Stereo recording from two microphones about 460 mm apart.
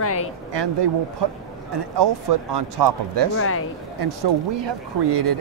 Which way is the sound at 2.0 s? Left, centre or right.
Right.